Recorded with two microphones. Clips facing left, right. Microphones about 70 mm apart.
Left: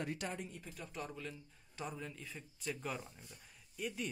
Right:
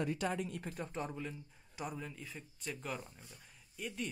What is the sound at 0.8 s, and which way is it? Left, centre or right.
Speech, right.